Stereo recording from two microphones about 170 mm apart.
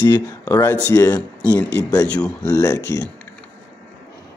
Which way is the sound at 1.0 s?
25° left (ahead or behind).